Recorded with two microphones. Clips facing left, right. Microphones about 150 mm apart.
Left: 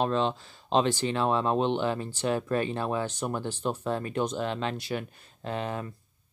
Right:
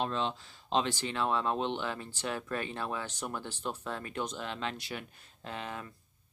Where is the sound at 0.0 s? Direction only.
50° left (ahead or behind).